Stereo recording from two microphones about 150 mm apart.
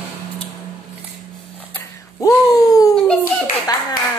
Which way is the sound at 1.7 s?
20° left (ahead or behind).